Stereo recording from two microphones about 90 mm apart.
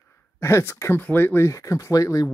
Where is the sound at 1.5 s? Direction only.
35° left (ahead or behind).